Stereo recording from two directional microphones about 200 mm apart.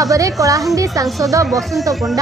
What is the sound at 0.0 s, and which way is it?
Speech, 15° right (ahead or behind).